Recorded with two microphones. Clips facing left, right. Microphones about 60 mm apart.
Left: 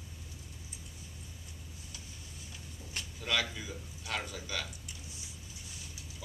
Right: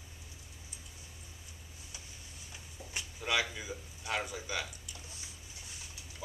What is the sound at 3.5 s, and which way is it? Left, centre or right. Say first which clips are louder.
Speech: right 1 dB; centre.